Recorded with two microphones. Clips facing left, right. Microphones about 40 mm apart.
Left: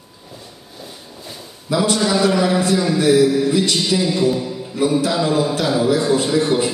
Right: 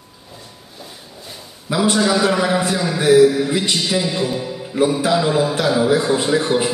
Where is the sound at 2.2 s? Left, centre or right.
Centre.